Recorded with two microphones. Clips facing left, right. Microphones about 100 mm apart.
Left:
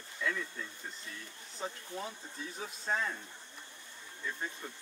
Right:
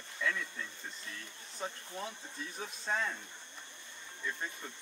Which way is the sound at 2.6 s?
5° left (ahead or behind).